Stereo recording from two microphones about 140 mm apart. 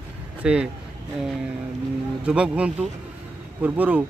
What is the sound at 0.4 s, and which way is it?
Speech, 10° right (ahead or behind).